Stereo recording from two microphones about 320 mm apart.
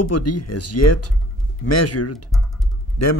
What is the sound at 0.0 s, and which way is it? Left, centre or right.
Speech, left.